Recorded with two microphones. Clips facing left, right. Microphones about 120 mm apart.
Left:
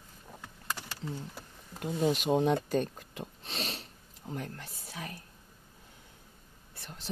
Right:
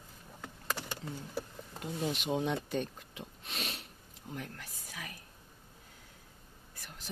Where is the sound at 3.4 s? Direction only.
30° left (ahead or behind).